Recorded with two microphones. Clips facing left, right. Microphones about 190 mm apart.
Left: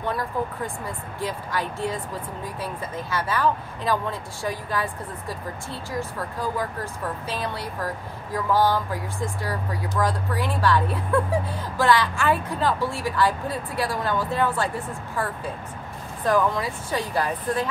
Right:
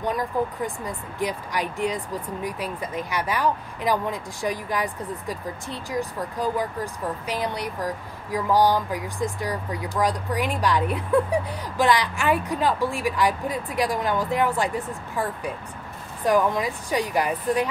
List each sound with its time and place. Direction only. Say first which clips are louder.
0.0 s speech: right 2 dB; 15° right (ahead or behind)